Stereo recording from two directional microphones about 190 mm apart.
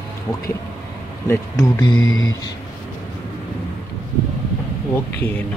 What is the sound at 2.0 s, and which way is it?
Speech, 90° left.